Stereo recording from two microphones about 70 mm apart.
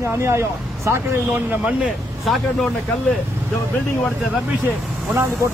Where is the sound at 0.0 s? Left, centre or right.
Right; by 1.9 s centre.